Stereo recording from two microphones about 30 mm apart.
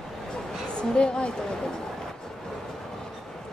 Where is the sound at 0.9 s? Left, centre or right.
Left.